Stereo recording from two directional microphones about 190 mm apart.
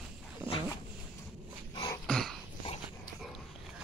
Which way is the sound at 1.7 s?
20° left (ahead or behind).